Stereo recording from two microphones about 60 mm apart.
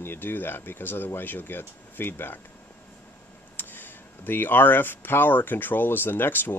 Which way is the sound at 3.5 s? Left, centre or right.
Left.